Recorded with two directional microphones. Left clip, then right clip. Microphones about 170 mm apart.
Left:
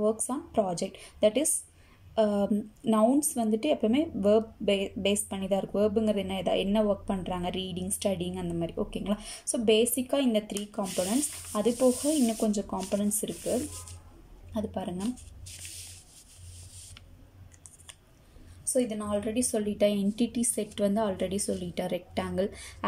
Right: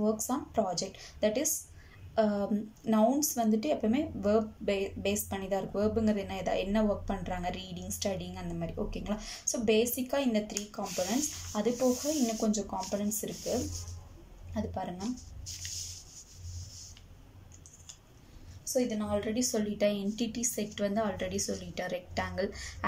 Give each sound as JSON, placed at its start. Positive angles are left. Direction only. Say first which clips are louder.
{"t": 0.0, "sound": "a woman's voice", "louder": "left 3 dB", "side_deg": 20}
{"t": 14.5, "sound": "speech", "louder": "left 2 dB", "side_deg": 20}
{"t": 18.7, "sound": "a woman's voice", "louder": "left 2 dB", "side_deg": 10}